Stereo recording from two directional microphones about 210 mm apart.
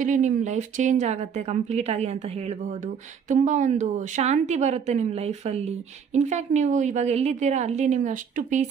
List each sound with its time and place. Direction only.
0.0 s a woman's voice: 35° right (ahead or behind)